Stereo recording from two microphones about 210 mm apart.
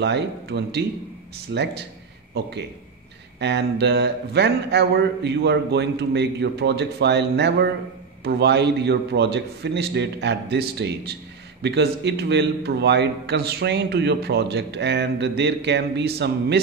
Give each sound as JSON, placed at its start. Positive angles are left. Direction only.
{"t": 0.0, "sound": "a man's voice", "side_deg": -55}
{"t": 3.3, "sound": "a man's voice", "side_deg": -55}